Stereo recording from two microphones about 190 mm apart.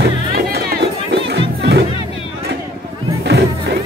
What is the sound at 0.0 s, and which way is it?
Music, 55° right (ahead or behind).